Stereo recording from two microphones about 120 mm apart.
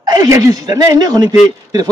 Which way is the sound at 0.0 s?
35° right (ahead or behind).